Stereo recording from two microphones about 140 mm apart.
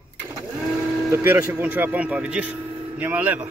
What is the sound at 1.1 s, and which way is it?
Speech, 15° right (ahead or behind).